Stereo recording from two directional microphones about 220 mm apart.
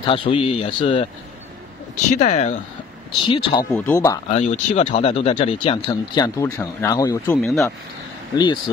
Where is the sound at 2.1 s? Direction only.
30° left (ahead or behind).